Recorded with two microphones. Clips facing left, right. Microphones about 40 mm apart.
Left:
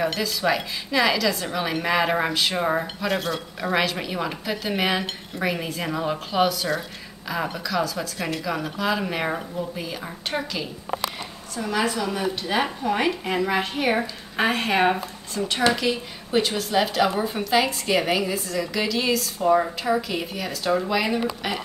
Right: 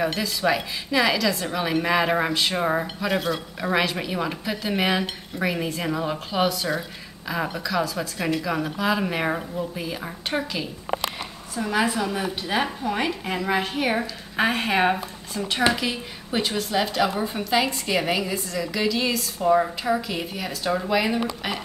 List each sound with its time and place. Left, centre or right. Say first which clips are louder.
0.0 s a woman's voice: even; centre
12.1 s a woman's voice: left 1 dB; centre
12.6 s a woman's voice: left 2 dB; centre